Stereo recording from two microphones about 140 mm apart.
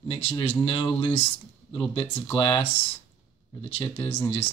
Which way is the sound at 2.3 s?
40° left (ahead or behind).